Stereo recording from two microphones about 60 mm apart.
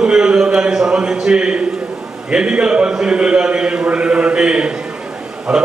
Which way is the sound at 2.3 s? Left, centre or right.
Centre.